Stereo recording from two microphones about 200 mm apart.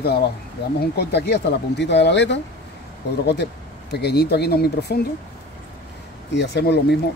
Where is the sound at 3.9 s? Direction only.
55° left (ahead or behind).